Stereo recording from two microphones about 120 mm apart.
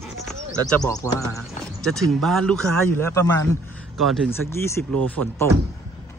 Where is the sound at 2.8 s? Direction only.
20° left (ahead or behind).